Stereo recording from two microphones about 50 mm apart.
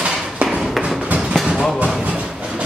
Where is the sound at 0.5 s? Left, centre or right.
Centre.